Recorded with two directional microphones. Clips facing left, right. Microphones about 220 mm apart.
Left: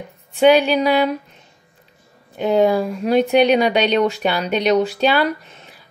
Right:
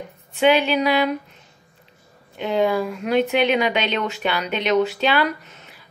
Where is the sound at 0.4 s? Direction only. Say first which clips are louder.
Left 4 dB; 40° left (ahead or behind).